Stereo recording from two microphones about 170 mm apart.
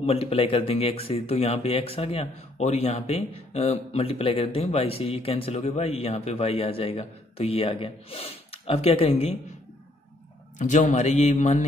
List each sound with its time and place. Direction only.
0.0 s speech: 35° left (ahead or behind)
10.6 s a man's voice: 45° left (ahead or behind)